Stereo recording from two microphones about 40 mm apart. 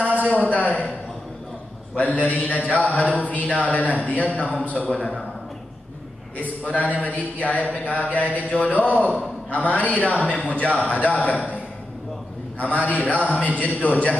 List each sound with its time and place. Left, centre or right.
0.5 s a sound: left
2.0 s a man's voice: left
4.8 s a man's voice: centre
6.3 s a man's voice: left
12.6 s a man's voice: left